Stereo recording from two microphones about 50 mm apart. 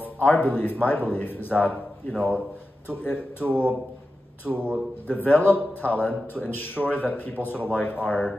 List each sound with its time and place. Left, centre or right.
0.0 s a man's voice: left
2.9 s a man's voice: left
4.6 s a man's voice: right
5.0 s a man's voice: left